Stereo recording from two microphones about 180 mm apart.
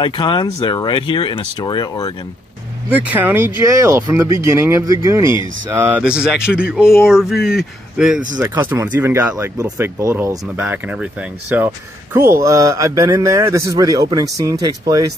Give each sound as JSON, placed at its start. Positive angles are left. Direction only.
{"t": 0.0, "sound": "speech", "side_deg": 25}
{"t": 2.9, "sound": "speech", "side_deg": -10}
{"t": 8.4, "sound": "speech", "side_deg": -15}